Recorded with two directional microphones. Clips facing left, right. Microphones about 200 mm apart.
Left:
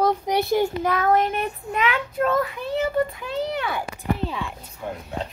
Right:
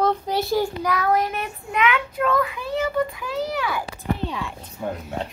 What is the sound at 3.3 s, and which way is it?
Speech, 25° left (ahead or behind).